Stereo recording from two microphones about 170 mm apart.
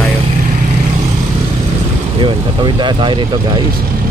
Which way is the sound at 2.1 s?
30° right (ahead or behind).